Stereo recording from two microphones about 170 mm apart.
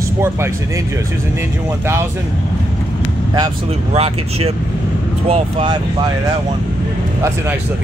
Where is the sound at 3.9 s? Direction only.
35° right (ahead or behind).